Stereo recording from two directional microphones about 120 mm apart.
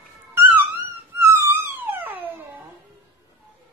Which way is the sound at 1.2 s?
20° right (ahead or behind).